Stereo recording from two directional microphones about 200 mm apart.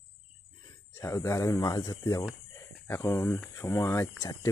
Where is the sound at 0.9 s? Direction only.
15° left (ahead or behind).